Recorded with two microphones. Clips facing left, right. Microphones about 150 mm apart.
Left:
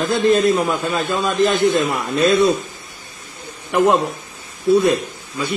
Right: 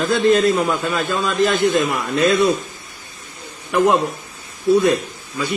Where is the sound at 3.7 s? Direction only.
20° left (ahead or behind).